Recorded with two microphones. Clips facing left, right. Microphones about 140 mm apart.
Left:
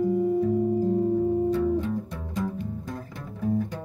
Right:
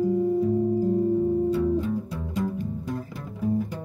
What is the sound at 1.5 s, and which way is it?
Music, 5° right (ahead or behind).